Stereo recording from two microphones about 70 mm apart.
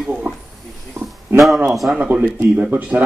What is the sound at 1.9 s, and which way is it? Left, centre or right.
A man's voice, centre.